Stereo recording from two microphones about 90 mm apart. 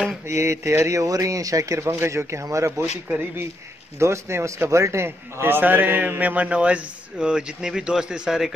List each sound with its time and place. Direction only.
0.3 s speech: 30° right (ahead or behind)
2.8 s a man's voice: 20° right (ahead or behind)
4.0 s a man's voice: 30° right (ahead or behind); by 8.5 s 5° right (ahead or behind)